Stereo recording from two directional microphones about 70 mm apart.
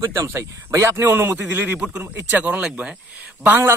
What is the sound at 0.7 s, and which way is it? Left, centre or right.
Speech, right.